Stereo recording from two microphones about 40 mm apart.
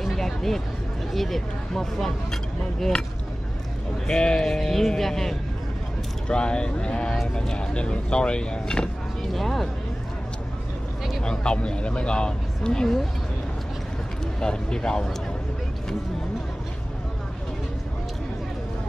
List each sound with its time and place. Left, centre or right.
0.0 s a sound: centre
1.1 s speech: centre
4.1 s speech: left
4.4 s speech: centre
6.2 s speech: left
9.3 s speech: centre
11.2 s speech: left
14.4 s speech: centre